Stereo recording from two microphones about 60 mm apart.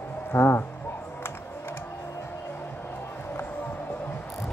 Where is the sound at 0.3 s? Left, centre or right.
Left.